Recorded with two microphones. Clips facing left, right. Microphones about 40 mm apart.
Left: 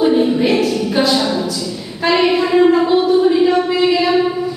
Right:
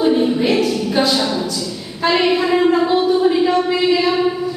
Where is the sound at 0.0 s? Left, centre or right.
Centre.